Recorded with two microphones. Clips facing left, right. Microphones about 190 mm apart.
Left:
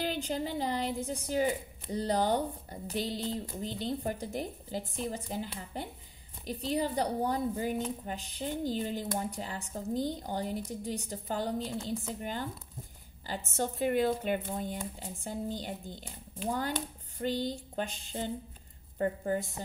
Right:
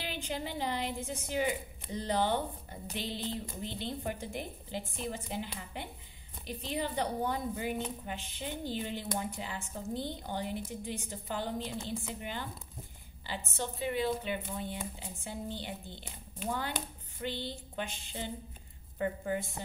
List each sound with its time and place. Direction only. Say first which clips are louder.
0.0 s a woman's voice: left 5 dB; 40° left (ahead or behind)